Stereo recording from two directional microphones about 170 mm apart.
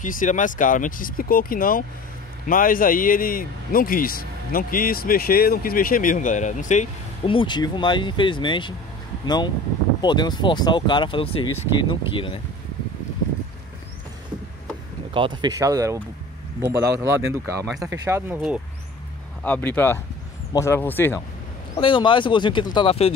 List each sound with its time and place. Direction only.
0.0 s speech: 50° left (ahead or behind)
7.2 s speech: 30° left (ahead or behind)
15.1 s speech: 25° right (ahead or behind)
19.4 s speech: 10° left (ahead or behind)
21.7 s speech: 30° left (ahead or behind)